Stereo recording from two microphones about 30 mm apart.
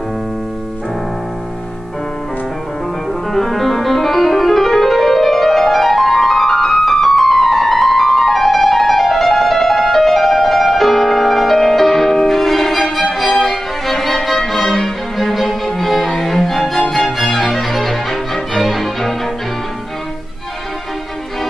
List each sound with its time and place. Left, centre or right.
3.1 s music: centre